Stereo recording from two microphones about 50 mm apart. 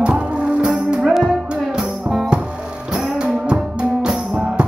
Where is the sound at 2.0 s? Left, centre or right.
Centre.